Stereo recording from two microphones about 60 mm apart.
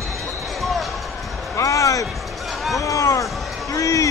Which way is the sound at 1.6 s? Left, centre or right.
Left.